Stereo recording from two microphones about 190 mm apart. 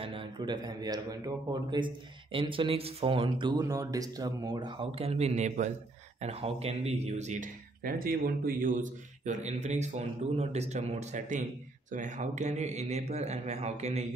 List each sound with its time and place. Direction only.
0.0 s a man's voice: 30° right (ahead or behind)